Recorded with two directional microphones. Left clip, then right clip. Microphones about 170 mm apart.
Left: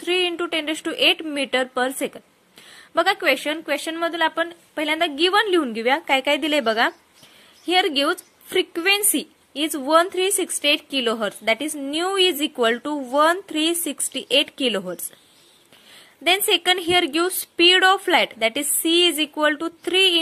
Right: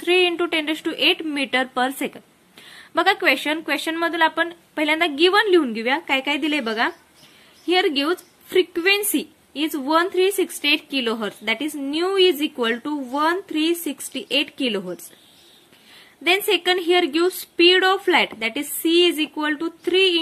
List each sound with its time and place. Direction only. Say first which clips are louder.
0.0 s a woman's voice: right 3 dB; 30° left (ahead or behind); by 15.0 s 50° left (ahead or behind)
16.3 s a woman's voice: even; 45° left (ahead or behind)